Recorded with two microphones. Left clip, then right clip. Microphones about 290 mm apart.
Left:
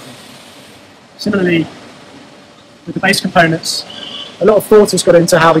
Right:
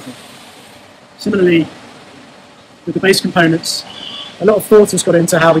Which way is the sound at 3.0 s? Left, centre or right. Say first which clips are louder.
Left 1 dB; centre.